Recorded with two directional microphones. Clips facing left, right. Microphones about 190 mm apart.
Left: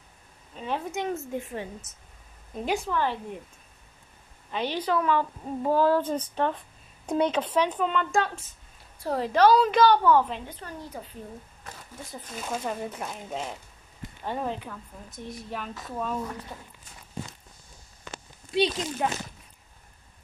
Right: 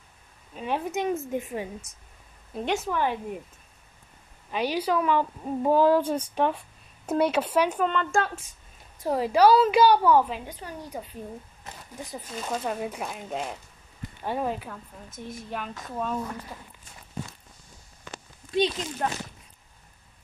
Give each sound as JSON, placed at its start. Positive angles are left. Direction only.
{"t": 0.6, "sound": "a woman's voice", "side_deg": -15}
{"t": 2.5, "sound": "a woman's voice", "side_deg": 0}
{"t": 2.9, "sound": "a woman's voice", "side_deg": -15}
{"t": 4.5, "sound": "a woman's voice", "side_deg": -10}
{"t": 7.8, "sound": "a woman's voice", "side_deg": 0}
{"t": 9.0, "sound": "a woman's voice", "side_deg": -10}
{"t": 11.6, "sound": "a sound", "side_deg": -15}
{"t": 12.4, "sound": "a woman's voice", "side_deg": 0}
{"t": 19.0, "sound": "speech", "side_deg": 10}